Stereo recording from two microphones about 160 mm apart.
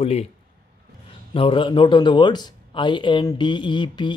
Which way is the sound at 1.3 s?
35° left (ahead or behind).